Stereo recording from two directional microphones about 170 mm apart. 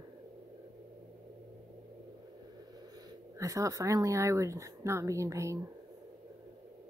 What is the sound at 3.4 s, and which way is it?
A woman's voice, 20° right (ahead or behind).